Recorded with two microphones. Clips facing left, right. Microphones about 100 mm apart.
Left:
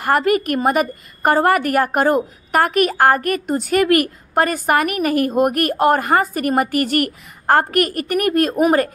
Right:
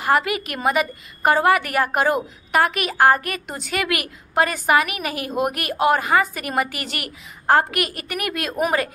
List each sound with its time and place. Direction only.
0.0 s a woman's voice: 45° left (ahead or behind)